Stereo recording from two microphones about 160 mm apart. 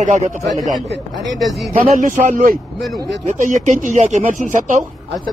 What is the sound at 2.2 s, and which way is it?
A man's voice, 60° right (ahead or behind).